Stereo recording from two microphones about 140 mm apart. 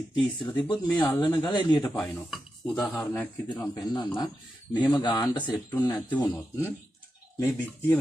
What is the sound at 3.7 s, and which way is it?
A man's voice, 30° left (ahead or behind).